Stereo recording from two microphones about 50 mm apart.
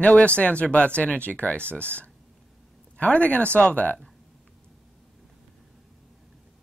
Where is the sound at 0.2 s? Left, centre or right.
Left.